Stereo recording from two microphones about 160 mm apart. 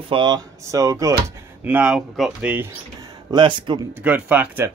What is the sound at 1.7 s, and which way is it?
Speech, 10° right (ahead or behind).